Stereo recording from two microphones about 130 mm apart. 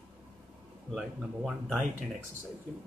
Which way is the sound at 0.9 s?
Centre (ahead or behind).